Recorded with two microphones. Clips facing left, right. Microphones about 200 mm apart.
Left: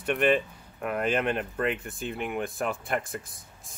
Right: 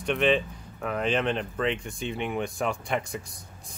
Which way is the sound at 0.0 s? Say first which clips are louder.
Even; 5° left (ahead or behind).